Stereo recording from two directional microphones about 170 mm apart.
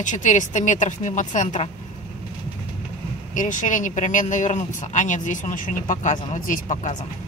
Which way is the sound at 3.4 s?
50° left (ahead or behind).